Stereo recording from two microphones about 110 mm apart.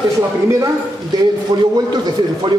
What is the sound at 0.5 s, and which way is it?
A man's voice, 30° right (ahead or behind).